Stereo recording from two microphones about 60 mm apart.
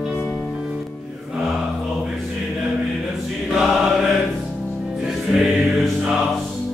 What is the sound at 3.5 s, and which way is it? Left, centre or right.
Choir, centre.